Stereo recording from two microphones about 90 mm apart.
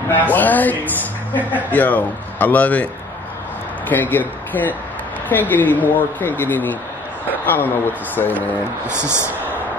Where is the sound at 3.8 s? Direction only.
20° left (ahead or behind).